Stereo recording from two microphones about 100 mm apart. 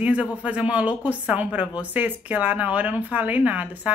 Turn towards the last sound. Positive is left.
turn(degrees=-15)  # may be behind; listen again after turning